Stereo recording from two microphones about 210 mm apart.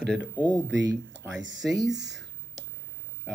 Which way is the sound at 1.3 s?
60° right (ahead or behind).